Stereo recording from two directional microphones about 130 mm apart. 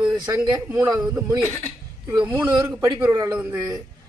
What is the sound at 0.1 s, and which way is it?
A man's voice, 30° right (ahead or behind).